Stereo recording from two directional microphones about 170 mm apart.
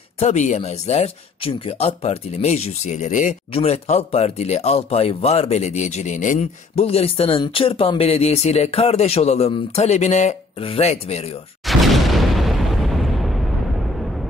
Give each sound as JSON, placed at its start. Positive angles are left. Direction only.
{"t": 0.2, "sound": "speech", "side_deg": 45}
{"t": 3.5, "sound": "speech", "side_deg": 40}
{"t": 11.6, "sound": "boom", "side_deg": 0}